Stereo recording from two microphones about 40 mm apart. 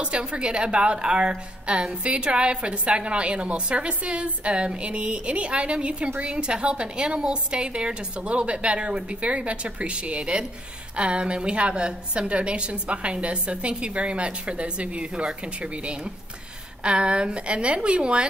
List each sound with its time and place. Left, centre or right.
0.0 s a woman's voice: right